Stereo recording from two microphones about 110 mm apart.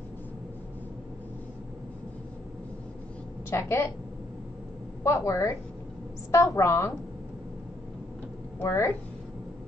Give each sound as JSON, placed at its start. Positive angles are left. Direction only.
{"t": 3.4, "sound": "a woman's voice", "side_deg": 25}
{"t": 5.0, "sound": "a woman's voice", "side_deg": 30}
{"t": 8.5, "sound": "a woman's voice", "side_deg": 25}